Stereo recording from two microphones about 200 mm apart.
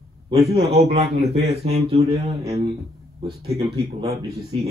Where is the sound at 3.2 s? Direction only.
25° right (ahead or behind).